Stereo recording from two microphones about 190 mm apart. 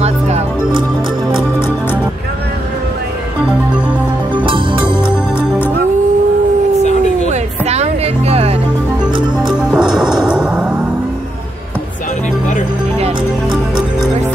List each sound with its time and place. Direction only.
0.0 s music: 30° right (ahead or behind)
4.5 s music: 25° right (ahead or behind)
6.8 s howl: 35° left (ahead or behind)
7.2 s music: 35° right (ahead or behind)
9.7 s music: 5° right (ahead or behind)